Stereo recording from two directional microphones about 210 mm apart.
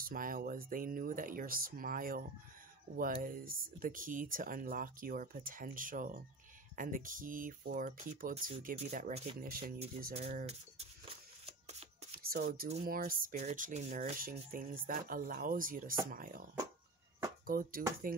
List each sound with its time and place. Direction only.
0.0 s speech: 40° right (ahead or behind)
10.1 s shuffling cards: 30° right (ahead or behind)
12.1 s a sound: 45° right (ahead or behind)
12.5 s speech: 30° right (ahead or behind)
12.8 s speech: 45° right (ahead or behind)
17.5 s speech: 45° right (ahead or behind)